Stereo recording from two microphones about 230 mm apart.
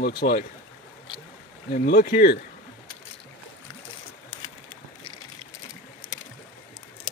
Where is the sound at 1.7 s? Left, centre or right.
Left.